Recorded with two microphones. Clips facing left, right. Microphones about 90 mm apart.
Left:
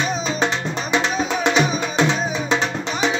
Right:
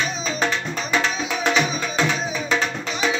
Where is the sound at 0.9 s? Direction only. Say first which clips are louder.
Left 3 dB; 20° left (ahead or behind).